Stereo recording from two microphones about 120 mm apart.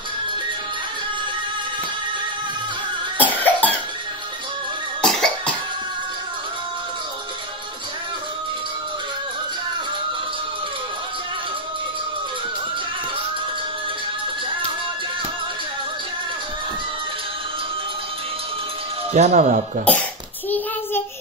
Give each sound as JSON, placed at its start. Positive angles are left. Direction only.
{"t": 3.3, "sound": "cough", "side_deg": 15}
{"t": 5.0, "sound": "cough", "side_deg": 5}
{"t": 19.1, "sound": "speech", "side_deg": -80}
{"t": 19.8, "sound": "cough", "side_deg": 10}